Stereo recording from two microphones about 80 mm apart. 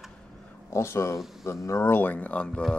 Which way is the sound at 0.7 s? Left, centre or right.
Left.